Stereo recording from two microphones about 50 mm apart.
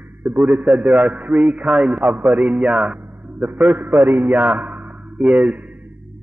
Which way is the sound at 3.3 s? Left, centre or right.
Right.